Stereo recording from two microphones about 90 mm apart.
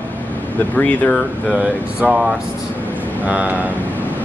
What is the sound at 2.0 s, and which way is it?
Speech, 5° right (ahead or behind).